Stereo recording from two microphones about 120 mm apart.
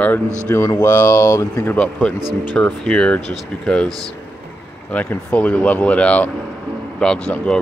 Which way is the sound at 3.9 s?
30° right (ahead or behind).